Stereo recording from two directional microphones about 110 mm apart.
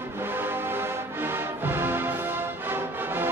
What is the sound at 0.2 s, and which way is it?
Music, 20° right (ahead or behind).